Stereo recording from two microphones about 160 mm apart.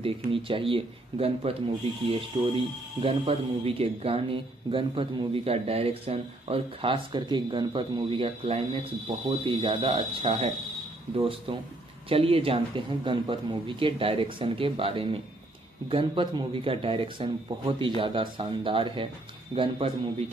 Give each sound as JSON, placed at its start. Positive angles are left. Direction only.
{"t": 0.0, "sound": "speech", "side_deg": -35}